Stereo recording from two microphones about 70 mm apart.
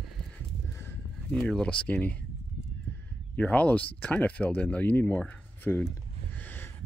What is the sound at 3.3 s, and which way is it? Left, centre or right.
Speech, left.